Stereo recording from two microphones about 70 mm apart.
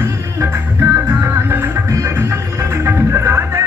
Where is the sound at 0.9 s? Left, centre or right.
Right.